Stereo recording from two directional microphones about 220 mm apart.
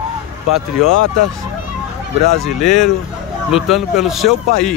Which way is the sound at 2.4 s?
Centre (ahead or behind).